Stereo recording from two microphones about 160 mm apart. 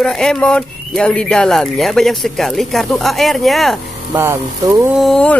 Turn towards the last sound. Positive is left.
turn(degrees=5)  # may be behind; listen again after turning